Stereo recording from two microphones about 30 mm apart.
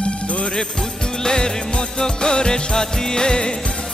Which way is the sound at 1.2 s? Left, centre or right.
Left.